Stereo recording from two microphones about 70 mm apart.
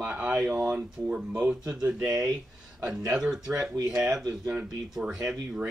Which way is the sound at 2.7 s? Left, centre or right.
Right.